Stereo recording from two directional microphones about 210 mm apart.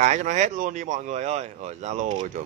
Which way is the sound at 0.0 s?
35° right (ahead or behind).